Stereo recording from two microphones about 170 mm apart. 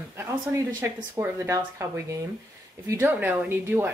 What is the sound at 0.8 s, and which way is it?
Speech, 10° right (ahead or behind).